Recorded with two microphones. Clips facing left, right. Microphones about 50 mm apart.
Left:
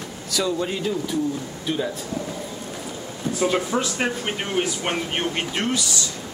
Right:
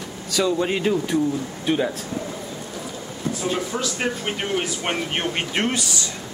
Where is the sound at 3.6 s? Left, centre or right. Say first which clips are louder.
Left 3 dB; left.